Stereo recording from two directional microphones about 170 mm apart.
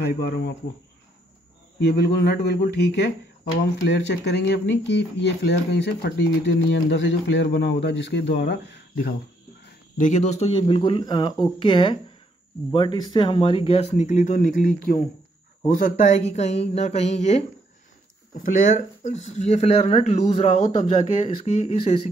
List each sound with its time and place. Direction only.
0.0 s speech: 65° left (ahead or behind)
1.8 s speech: 75° left (ahead or behind)
9.9 s speech: 45° left (ahead or behind)